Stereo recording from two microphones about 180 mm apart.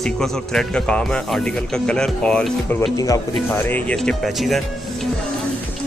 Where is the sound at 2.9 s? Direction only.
20° left (ahead or behind); by 4.6 s centre (ahead or behind).